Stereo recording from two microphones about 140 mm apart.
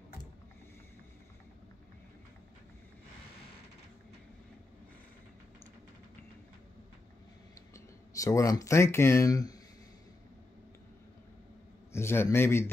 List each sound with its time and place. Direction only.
7.7 s speech: 25° left (ahead or behind)
11.9 s a man's voice: 20° left (ahead or behind)